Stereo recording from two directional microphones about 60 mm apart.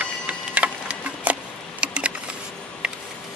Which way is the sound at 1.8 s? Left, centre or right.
Centre.